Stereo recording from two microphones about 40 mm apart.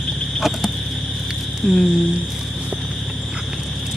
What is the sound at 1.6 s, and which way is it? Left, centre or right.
Speech, centre.